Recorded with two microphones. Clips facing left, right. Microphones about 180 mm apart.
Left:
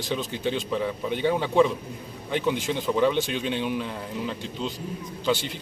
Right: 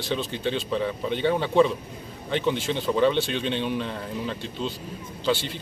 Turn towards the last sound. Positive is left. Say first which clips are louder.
# even
turn(degrees=15)  # may be behind; listen again after turning